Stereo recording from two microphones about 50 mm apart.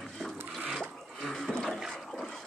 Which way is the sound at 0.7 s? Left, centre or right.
Centre.